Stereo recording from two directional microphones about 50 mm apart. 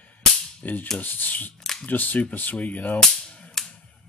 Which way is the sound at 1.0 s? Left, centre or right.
Left.